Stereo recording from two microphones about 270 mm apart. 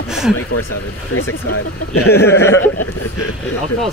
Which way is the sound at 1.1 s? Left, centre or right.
Left.